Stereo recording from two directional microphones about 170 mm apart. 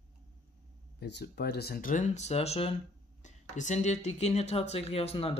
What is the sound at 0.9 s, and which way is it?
Speech, 90° left.